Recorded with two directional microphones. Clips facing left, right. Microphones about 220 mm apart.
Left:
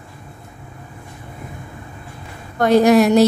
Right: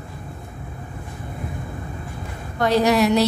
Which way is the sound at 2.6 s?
50° left (ahead or behind).